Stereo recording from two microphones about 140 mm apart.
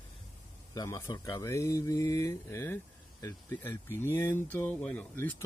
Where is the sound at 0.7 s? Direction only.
25° left (ahead or behind).